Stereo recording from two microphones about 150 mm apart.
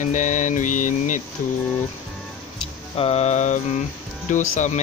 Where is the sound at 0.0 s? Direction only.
55° left (ahead or behind).